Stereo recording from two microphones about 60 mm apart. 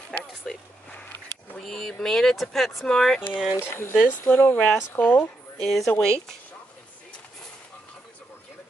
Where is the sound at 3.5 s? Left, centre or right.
Left.